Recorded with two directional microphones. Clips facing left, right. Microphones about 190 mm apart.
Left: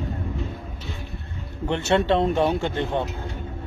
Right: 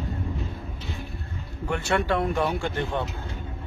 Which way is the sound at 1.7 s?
25° left (ahead or behind).